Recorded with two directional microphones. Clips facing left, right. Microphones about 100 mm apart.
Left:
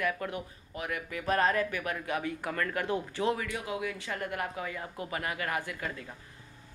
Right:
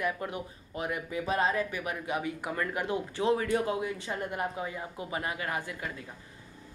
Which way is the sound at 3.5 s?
35° right (ahead or behind).